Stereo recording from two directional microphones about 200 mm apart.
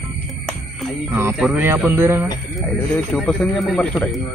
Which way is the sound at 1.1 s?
10° right (ahead or behind).